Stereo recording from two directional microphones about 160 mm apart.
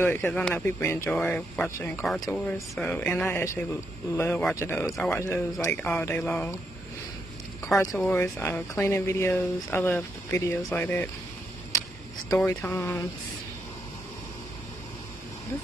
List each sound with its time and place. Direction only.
0.0 s speech: 15° left (ahead or behind)
1.1 s speech: 5° left (ahead or behind)
1.7 s speech: 15° left (ahead or behind)
2.0 s speech: centre (ahead or behind)
7.7 s speech: 5° left (ahead or behind)
12.3 s speech: 10° left (ahead or behind)